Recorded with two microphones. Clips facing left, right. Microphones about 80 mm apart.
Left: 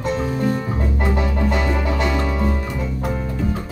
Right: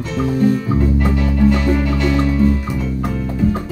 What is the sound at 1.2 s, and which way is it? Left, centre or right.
Music, left.